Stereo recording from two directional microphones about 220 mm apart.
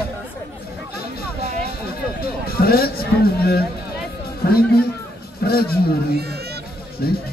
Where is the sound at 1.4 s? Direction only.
45° left (ahead or behind).